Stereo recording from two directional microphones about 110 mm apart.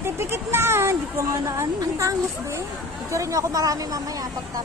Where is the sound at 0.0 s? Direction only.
20° right (ahead or behind).